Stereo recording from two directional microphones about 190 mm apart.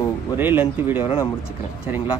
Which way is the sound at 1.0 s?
30° left (ahead or behind).